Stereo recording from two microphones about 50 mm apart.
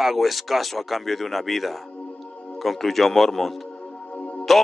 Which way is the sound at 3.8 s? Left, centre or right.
Left.